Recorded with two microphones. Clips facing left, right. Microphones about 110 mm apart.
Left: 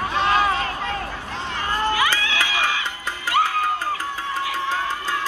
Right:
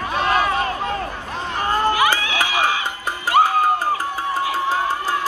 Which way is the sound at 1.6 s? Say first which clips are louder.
Right 4 dB; 45° right (ahead or behind).